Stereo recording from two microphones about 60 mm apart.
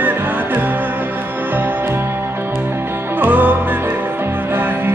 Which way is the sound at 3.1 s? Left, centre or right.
Right.